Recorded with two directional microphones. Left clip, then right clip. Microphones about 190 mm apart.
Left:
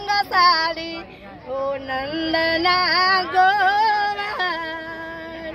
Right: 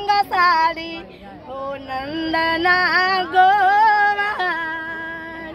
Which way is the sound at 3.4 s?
Centre (ahead or behind).